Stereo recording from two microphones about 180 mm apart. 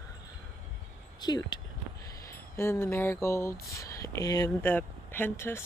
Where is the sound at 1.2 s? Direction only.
25° left (ahead or behind).